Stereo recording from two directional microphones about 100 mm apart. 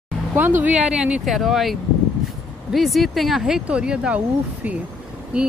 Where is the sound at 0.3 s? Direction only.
20° right (ahead or behind).